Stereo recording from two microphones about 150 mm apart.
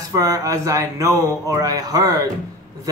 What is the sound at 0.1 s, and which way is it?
Speech, 25° right (ahead or behind).